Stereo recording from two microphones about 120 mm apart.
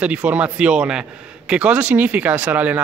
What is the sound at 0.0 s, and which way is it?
Speech, 10° right (ahead or behind).